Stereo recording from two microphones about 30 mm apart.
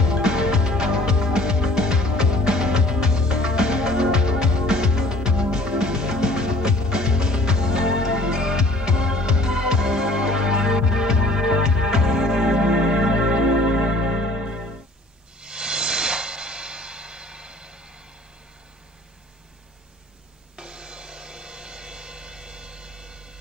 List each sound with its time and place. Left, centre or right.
0.0 s music: right
20.5 s music: right